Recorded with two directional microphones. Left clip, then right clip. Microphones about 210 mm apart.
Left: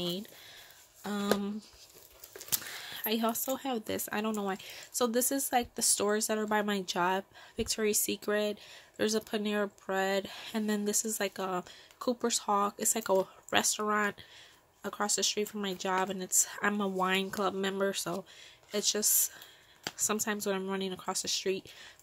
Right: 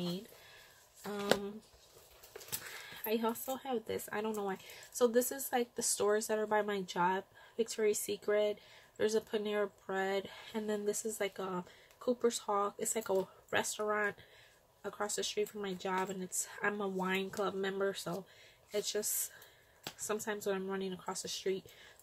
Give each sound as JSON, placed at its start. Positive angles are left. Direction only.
{"t": 2.5, "sound": "speech", "side_deg": 45}
{"t": 20.1, "sound": "speech", "side_deg": 40}